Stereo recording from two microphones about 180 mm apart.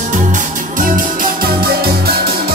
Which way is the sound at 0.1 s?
45° right (ahead or behind).